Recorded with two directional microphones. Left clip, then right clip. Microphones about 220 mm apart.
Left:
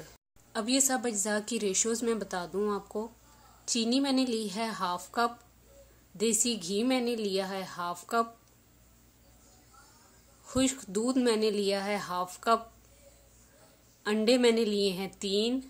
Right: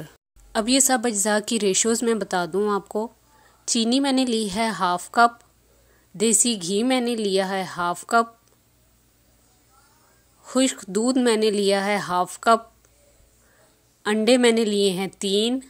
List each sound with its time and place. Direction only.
0.5 s a woman's voice: 35° right (ahead or behind)
10.4 s a woman's voice: 30° right (ahead or behind)
14.0 s a woman's voice: 30° right (ahead or behind)